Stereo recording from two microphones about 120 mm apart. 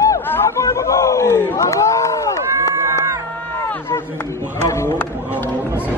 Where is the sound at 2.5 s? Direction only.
25° right (ahead or behind).